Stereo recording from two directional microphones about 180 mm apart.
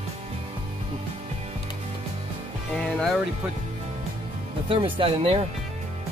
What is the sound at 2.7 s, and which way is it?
Speech, centre (ahead or behind).